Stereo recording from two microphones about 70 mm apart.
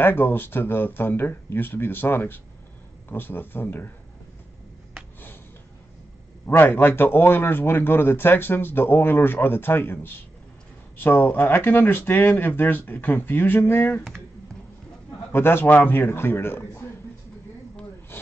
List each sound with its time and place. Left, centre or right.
0.0 s speech: left
6.4 s speech: left
15.3 s speech: left